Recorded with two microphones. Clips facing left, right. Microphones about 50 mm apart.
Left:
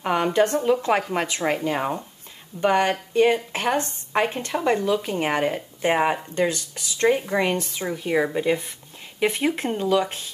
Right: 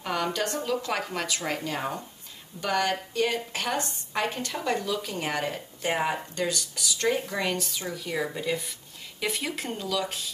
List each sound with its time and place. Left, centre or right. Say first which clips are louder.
0.0 s a woman's voice: left 8 dB; left